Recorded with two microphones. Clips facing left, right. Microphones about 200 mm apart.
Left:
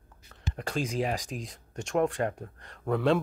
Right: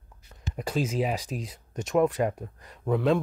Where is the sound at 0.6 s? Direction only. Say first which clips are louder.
Right 3 dB; 5° right (ahead or behind).